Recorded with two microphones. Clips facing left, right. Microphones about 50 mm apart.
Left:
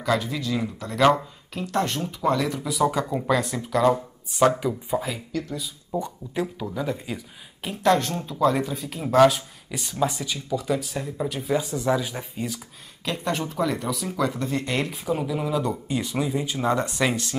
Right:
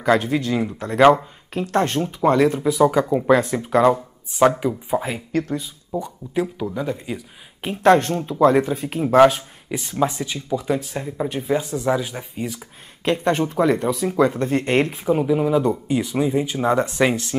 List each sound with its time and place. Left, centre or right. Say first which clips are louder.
0.0 s speech: right 6 dB; right
2.7 s speech: right 6 dB; right
3.3 s speech: right 7 dB; right
4.6 s speech: right 4 dB; centre
5.0 s speech: right 6 dB; right
5.9 s speech: even; centre
7.6 s speech: right 6 dB; right
9.1 s speech: right 3 dB; right
11.9 s speech: right 2 dB; centre
12.5 s speech: right 2 dB; right
15.0 s speech: right 6 dB; right